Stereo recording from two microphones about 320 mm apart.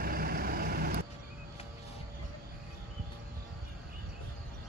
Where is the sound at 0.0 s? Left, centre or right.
Right.